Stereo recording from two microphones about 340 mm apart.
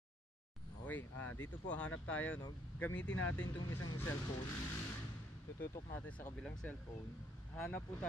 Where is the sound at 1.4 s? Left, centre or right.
Centre.